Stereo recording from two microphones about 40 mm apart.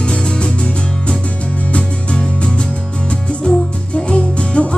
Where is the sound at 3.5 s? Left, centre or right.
Left.